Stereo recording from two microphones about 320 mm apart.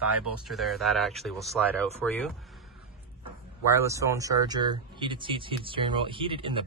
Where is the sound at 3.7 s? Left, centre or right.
Centre.